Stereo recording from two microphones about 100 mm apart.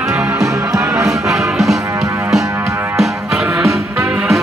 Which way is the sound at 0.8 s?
5° right (ahead or behind).